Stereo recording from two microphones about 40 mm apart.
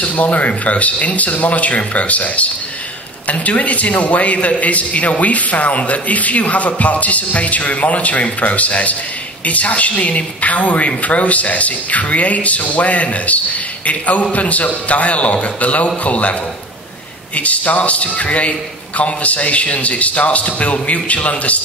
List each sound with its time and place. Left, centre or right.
0.0 s a man's voice: left
17.4 s a man's voice: left